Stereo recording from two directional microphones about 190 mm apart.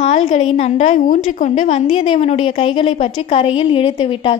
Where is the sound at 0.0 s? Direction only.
35° left (ahead or behind).